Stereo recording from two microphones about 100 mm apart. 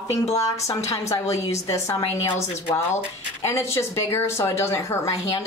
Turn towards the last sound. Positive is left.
turn(degrees=30)  # may be behind; listen again after turning